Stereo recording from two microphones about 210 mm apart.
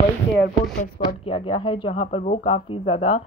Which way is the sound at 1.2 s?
25° left (ahead or behind).